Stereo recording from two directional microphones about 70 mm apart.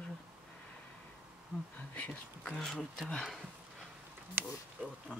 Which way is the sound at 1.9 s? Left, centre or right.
Left.